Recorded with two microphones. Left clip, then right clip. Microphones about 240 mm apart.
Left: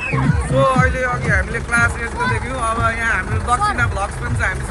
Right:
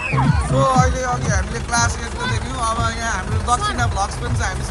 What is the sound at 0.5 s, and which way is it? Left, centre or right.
Music, centre.